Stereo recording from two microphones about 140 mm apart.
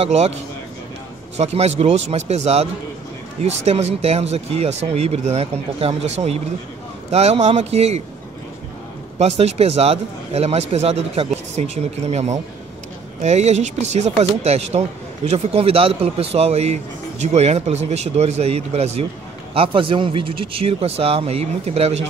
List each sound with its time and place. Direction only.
0.0 s speech: 50° right (ahead or behind)
9.2 s a man's voice: 50° right (ahead or behind)